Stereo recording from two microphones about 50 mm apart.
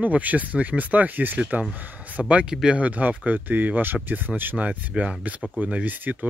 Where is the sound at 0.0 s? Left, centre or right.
Right.